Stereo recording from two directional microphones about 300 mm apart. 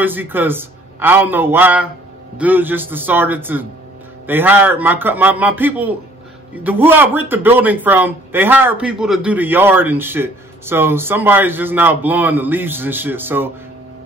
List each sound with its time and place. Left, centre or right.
0.0 s a man's voice: centre